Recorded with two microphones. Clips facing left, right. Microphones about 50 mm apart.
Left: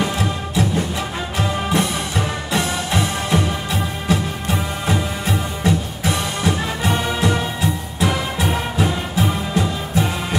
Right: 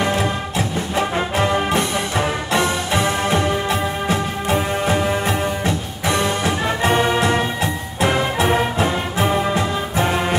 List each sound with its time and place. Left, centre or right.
0.0 s music: right